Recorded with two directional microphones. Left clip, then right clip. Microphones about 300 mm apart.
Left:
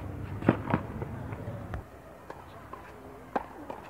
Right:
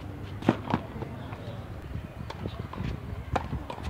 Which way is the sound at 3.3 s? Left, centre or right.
Centre.